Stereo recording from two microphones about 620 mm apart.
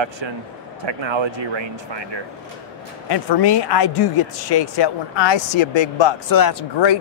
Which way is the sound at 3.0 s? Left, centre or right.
Left.